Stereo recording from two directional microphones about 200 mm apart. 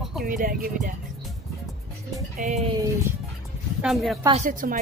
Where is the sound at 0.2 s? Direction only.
45° right (ahead or behind).